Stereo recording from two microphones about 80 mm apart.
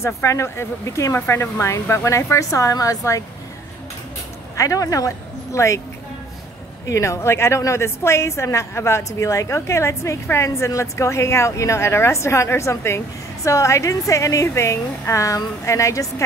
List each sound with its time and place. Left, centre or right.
0.0 s a woman's voice: left
4.6 s speech: left
6.9 s a woman's voice: left